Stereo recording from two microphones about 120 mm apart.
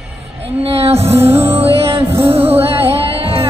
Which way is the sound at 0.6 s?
55° right (ahead or behind).